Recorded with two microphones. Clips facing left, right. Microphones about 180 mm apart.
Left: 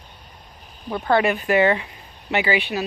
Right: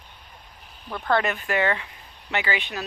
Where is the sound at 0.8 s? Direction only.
15° left (ahead or behind).